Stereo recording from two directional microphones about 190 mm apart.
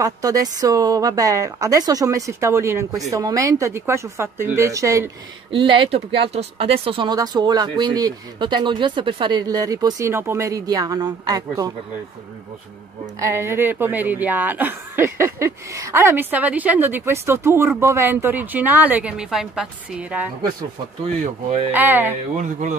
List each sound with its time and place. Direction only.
0.0 s speech: 20° right (ahead or behind)
5.5 s speech: 25° right (ahead or behind)
13.2 s speech: 15° right (ahead or behind)
21.2 s speech: 35° right (ahead or behind)
21.7 s speech: 10° right (ahead or behind)
22.4 s speech: 40° right (ahead or behind)